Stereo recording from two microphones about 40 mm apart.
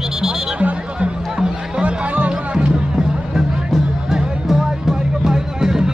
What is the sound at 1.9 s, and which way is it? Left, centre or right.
Music, right.